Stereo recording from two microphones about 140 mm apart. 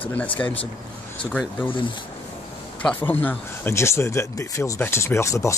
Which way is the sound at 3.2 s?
15° left (ahead or behind).